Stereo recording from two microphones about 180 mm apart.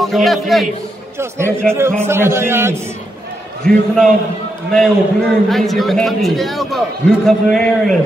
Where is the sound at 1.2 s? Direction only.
15° right (ahead or behind).